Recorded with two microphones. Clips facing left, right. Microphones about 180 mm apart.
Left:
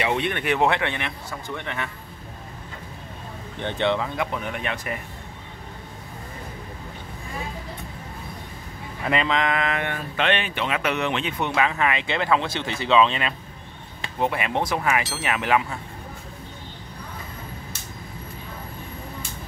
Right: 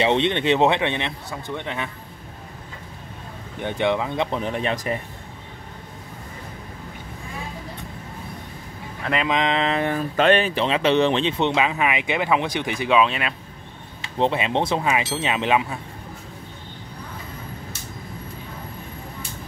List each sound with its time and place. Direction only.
0.0 s speech: 25° right (ahead or behind)
3.5 s speech: 10° right (ahead or behind)
4.3 s speech: 30° right (ahead or behind)
9.3 s speech: 20° right (ahead or behind); by 13.3 s 5° right (ahead or behind)
14.1 s speech: 25° right (ahead or behind)